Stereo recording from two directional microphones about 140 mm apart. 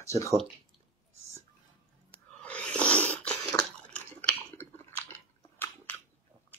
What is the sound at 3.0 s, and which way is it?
Dog, 10° left (ahead or behind).